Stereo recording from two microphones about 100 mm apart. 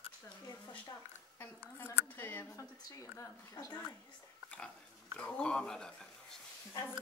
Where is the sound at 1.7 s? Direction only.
25° left (ahead or behind).